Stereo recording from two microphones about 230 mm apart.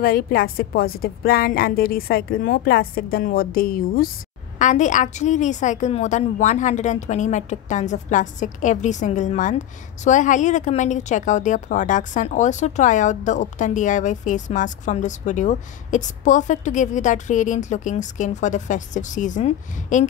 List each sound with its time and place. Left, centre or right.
0.0 s a woman's voice: left